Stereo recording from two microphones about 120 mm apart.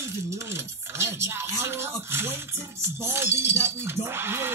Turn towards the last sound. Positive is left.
turn(degrees=-20)  # may be behind; listen again after turning